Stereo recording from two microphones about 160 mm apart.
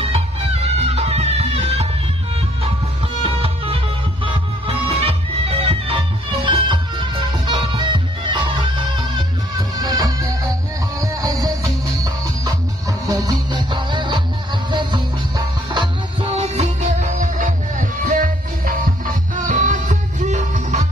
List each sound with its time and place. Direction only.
0.0 s music: 40° right (ahead or behind)
3.2 s music: 35° right (ahead or behind)